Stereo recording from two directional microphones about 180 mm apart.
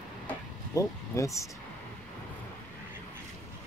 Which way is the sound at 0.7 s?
15° left (ahead or behind).